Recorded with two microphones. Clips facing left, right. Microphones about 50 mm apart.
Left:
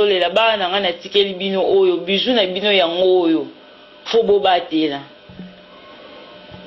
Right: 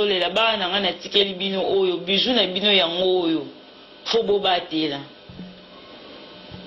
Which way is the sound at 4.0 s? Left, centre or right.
Left.